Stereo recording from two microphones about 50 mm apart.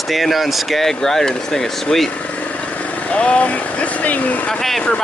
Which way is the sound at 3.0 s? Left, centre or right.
Left.